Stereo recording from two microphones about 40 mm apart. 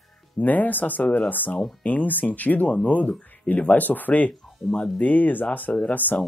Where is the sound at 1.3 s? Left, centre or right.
Left.